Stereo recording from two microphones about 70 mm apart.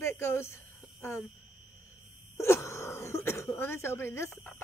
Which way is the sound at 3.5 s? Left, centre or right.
Left.